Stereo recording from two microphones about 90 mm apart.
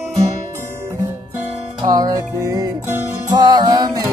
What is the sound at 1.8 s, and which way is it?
Music, 45° right (ahead or behind).